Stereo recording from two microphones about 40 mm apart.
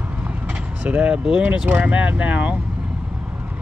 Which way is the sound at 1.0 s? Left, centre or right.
Right.